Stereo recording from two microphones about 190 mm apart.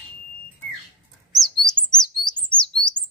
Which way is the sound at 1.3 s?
Centre (ahead or behind).